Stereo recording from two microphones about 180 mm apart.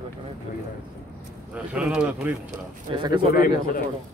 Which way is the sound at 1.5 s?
5° right (ahead or behind).